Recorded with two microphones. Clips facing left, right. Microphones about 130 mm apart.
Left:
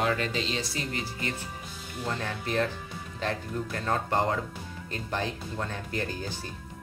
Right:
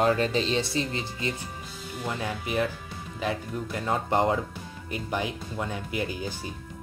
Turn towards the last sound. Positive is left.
turn(degrees=-10)  # may be behind; listen again after turning